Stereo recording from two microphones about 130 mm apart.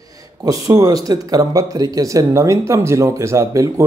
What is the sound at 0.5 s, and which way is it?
Speech, 30° right (ahead or behind).